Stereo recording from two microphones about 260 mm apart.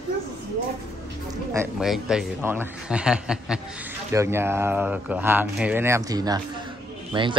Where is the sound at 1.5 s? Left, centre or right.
Centre.